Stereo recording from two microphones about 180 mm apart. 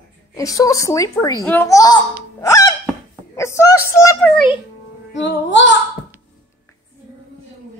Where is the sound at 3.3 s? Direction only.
15° left (ahead or behind).